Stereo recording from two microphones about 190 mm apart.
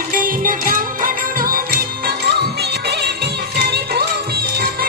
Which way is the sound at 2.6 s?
60° right (ahead or behind).